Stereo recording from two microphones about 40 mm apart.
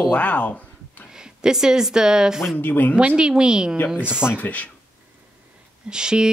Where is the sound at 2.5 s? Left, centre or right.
Left.